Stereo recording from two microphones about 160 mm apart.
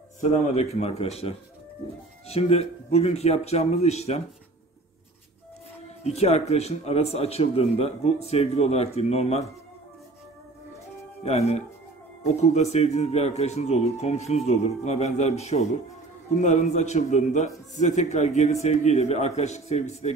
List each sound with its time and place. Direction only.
0.7 s a man's voice: 40° left (ahead or behind)
6.0 s a man's voice: 40° left (ahead or behind)
11.2 s a man's voice: 40° left (ahead or behind)